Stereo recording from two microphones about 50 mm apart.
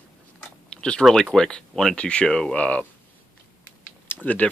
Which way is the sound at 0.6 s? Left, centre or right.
Centre.